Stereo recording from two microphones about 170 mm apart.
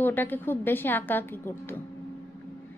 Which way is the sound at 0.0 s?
10° left (ahead or behind).